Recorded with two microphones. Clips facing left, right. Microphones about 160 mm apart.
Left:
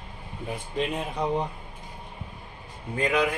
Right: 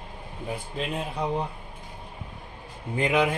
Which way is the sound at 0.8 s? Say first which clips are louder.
Left 3 dB; centre (ahead or behind).